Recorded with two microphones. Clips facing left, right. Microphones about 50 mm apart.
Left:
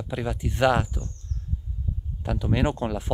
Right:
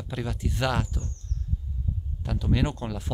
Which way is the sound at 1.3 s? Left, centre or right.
Left.